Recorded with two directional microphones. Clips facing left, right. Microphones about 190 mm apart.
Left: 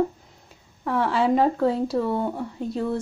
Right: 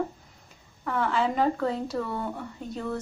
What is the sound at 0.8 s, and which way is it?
Speech, 30° left (ahead or behind).